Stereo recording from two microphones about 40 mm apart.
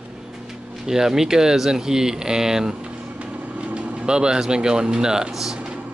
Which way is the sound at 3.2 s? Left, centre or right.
Right.